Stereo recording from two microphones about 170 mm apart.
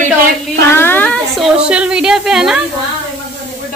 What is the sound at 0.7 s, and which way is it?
Speech, 15° left (ahead or behind).